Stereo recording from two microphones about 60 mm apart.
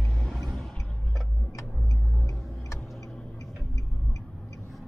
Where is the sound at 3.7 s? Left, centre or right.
Left.